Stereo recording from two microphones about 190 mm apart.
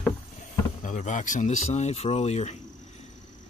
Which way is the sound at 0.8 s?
40° left (ahead or behind).